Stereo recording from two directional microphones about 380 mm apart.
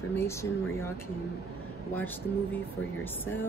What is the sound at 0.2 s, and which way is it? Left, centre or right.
Speech, centre.